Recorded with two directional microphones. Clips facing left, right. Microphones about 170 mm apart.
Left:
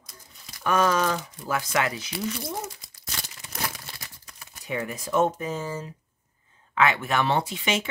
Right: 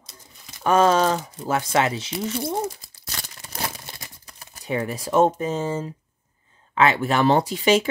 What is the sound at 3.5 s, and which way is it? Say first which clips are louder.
Crumpling: right 2 dB; 25° right (ahead or behind).